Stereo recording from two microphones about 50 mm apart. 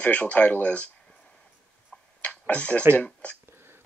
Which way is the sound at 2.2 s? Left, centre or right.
Left.